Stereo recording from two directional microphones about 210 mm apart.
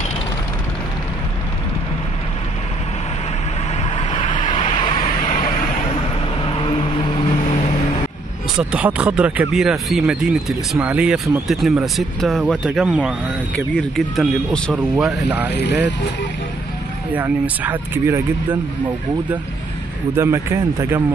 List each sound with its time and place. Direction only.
3.9 s vehicle: 25° left (ahead or behind)
6.4 s vehicle: 25° left (ahead or behind)
8.5 s speech: 5° right (ahead or behind)
15.5 s speech: 55° left (ahead or behind)
17.1 s speech: 10° right (ahead or behind)
20.2 s speech: 10° right (ahead or behind)